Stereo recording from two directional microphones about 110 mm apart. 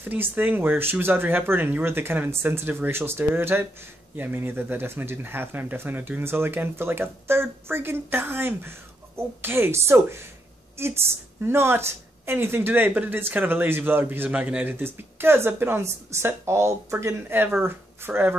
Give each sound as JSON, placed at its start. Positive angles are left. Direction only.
{"t": 0.0, "sound": "speech", "side_deg": -15}